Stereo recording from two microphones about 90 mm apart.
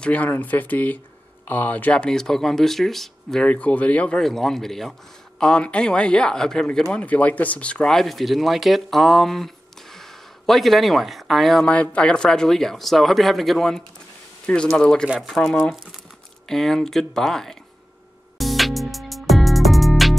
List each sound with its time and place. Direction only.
0.0 s speech: 15° left (ahead or behind)
11.7 s speech: 15° left (ahead or behind)
18.4 s music: centre (ahead or behind)